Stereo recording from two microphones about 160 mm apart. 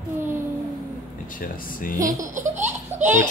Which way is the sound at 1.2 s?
60° left (ahead or behind).